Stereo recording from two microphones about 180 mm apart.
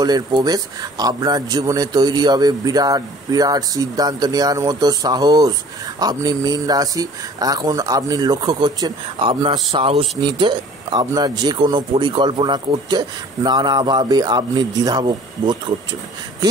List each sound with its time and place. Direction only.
0.0 s speech: 20° right (ahead or behind)